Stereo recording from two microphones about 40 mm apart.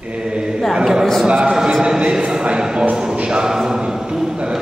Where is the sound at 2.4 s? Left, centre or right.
Right.